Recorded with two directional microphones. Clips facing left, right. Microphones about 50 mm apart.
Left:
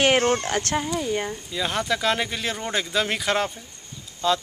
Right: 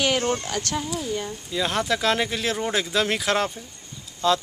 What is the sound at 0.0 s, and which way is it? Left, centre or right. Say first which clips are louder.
Speech: left 4 dB; left.